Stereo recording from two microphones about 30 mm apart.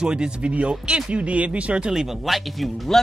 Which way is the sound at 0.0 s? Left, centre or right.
Right.